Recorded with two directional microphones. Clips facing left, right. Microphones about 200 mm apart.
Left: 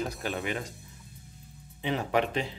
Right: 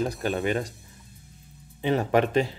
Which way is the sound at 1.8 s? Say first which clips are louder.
Right 5 dB; 45° right (ahead or behind).